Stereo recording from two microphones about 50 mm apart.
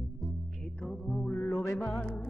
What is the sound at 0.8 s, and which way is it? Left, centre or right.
Music, centre.